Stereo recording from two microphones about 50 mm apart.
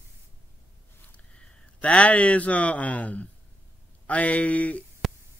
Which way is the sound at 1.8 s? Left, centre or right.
Left.